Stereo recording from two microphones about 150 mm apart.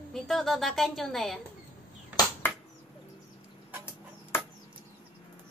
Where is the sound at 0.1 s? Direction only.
Centre (ahead or behind).